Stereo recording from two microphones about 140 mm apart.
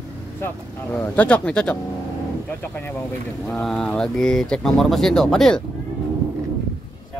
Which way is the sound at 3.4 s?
5° left (ahead or behind).